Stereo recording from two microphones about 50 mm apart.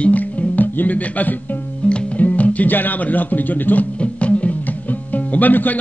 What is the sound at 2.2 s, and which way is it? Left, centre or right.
Speech, left.